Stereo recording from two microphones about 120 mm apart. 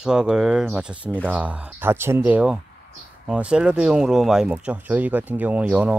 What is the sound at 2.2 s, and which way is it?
Speech, 10° right (ahead or behind).